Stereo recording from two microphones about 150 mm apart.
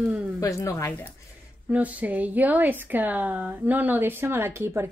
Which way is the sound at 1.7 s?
10° right (ahead or behind).